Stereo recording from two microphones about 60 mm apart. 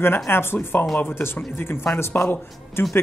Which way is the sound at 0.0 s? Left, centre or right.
Left.